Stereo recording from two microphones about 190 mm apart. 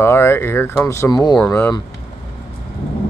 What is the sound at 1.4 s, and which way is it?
Speech, 10° left (ahead or behind).